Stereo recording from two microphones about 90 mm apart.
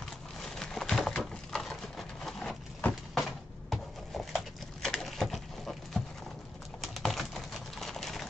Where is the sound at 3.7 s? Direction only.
Centre (ahead or behind).